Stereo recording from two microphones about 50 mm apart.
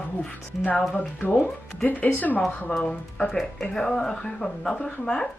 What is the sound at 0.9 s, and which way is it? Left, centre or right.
Speech, left.